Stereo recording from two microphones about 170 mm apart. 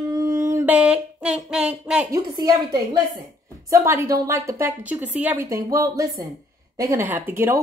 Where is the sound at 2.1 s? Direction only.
20° right (ahead or behind).